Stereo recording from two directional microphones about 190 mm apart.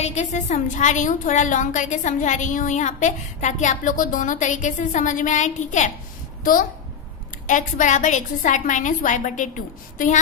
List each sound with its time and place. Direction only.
0.0 s a woman's voice: 35° left (ahead or behind)
7.4 s a woman's voice: 40° left (ahead or behind)